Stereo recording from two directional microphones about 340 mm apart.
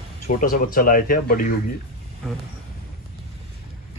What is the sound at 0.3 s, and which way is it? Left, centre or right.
Speech, left.